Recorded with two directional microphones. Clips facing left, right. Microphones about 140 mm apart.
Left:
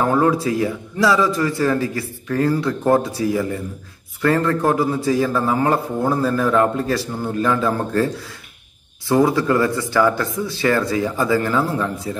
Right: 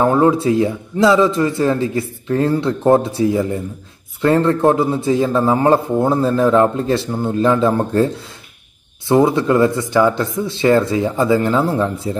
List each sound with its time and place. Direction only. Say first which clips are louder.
0.0 s a man's voice: right 4 dB; 25° right (ahead or behind)
9.1 s a man's voice: right 3 dB; 20° right (ahead or behind)